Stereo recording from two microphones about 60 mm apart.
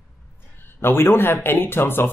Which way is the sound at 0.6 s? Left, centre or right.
Left.